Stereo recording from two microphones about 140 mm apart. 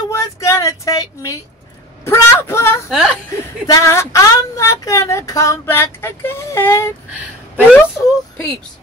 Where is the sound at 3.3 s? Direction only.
20° left (ahead or behind).